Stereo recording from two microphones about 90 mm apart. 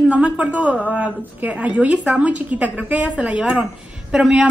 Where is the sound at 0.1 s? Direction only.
15° right (ahead or behind).